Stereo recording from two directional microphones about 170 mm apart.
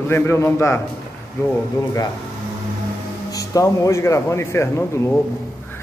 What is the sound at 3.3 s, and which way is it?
A man's voice, 20° left (ahead or behind).